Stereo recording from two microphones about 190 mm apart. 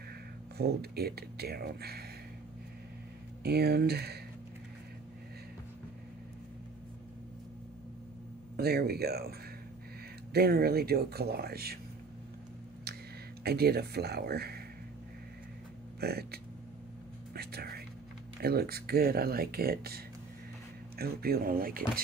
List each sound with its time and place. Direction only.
0.6 s speech: 55° right (ahead or behind)
3.4 s speech: 55° right (ahead or behind)
8.5 s speech: 55° right (ahead or behind)
10.3 s speech: 55° right (ahead or behind)
13.4 s speech: 55° right (ahead or behind)
16.0 s speech: 55° right (ahead or behind)
17.3 s whispering: 55° right (ahead or behind)
18.4 s speech: 55° right (ahead or behind)
21.0 s speech: 55° right (ahead or behind)